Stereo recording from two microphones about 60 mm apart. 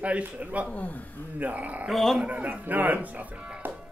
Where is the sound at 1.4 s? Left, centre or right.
Right.